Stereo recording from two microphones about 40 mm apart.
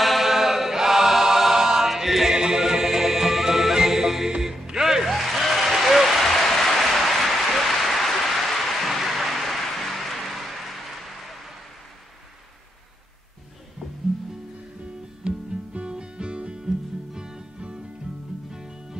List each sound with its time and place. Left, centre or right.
0.0 s choir: centre
2.3 s music: centre
5.1 s applause: centre
15.2 s music: right
16.6 s music: centre